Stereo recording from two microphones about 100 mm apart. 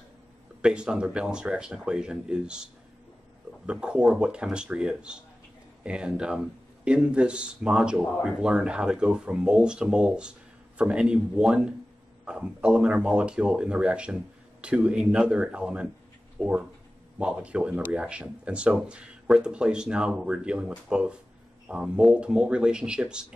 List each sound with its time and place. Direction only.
0.6 s speech: 10° right (ahead or behind)